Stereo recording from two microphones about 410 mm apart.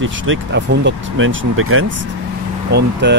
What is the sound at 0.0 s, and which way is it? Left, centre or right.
Speech, right.